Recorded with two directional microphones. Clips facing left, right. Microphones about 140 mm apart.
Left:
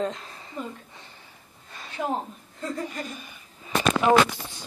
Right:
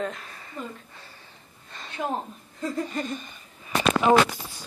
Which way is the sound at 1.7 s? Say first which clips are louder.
Left 1 dB; 5° left (ahead or behind).